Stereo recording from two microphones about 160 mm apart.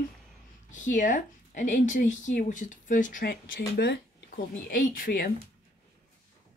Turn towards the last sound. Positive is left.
turn(degrees=65)  # may be behind; listen again after turning